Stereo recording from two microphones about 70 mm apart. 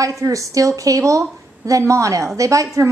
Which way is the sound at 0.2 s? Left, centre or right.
Right.